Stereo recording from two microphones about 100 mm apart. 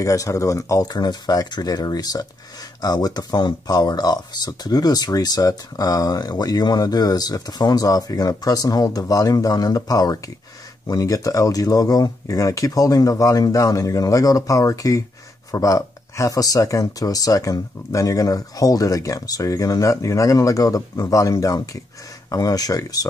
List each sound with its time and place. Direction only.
0.0 s speech: 35° left (ahead or behind)